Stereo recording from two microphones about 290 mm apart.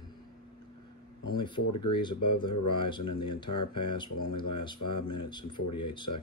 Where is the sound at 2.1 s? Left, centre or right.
Left.